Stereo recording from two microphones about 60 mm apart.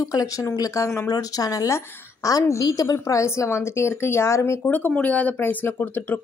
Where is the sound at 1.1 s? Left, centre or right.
Left.